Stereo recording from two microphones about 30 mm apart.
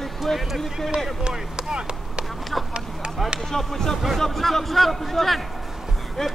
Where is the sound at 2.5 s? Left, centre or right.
Centre.